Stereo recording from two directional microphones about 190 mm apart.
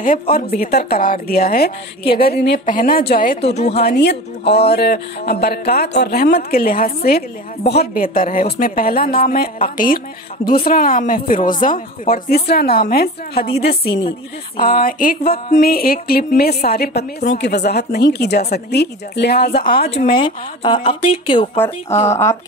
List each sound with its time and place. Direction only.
0.0 s speech: 50° left (ahead or behind)
3.3 s speech: 35° left (ahead or behind)
3.7 s speech: 60° left (ahead or behind)
14.6 s speech: 50° left (ahead or behind)
19.9 s speech: 30° left (ahead or behind)